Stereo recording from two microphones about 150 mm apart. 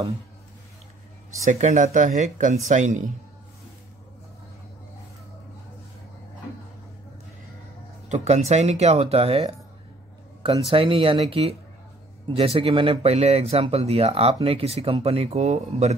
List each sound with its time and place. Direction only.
1.5 s speech: 55° right (ahead or behind)
8.1 s speech: 50° right (ahead or behind)
10.4 s speech: 35° right (ahead or behind)